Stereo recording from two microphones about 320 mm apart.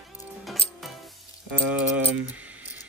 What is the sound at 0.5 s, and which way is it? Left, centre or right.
Music, centre.